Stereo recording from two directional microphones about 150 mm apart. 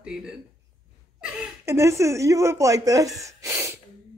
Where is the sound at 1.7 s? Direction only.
20° right (ahead or behind).